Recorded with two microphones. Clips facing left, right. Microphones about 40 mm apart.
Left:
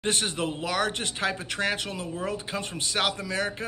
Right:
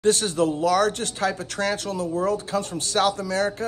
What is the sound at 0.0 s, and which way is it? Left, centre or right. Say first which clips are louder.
Speech: right 7 dB; left.